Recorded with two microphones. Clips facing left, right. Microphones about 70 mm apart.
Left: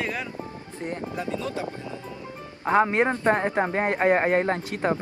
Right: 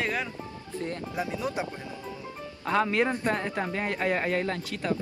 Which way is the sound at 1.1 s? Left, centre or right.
Centre.